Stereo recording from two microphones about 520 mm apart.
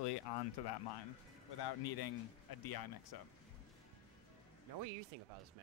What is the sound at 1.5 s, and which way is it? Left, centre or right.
Speech, left.